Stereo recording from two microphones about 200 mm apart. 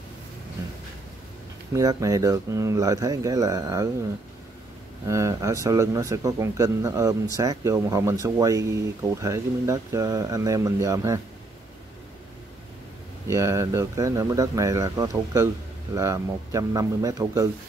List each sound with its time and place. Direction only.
1.7 s speech: 15° right (ahead or behind)
5.0 s speech: 15° right (ahead or behind)
13.3 s speech: 15° right (ahead or behind)